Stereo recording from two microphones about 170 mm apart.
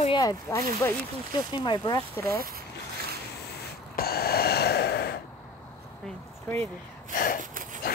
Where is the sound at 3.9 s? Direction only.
65° left (ahead or behind).